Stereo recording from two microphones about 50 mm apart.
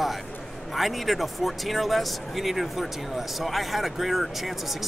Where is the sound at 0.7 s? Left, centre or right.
Centre.